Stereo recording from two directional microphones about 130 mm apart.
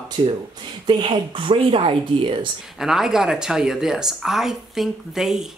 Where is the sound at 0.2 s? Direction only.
40° right (ahead or behind).